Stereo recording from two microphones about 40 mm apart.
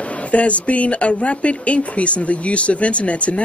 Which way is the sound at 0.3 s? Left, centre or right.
Left.